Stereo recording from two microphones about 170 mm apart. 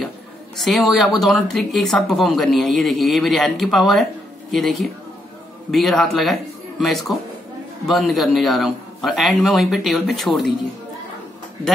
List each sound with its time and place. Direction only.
0.6 s speech: centre (ahead or behind)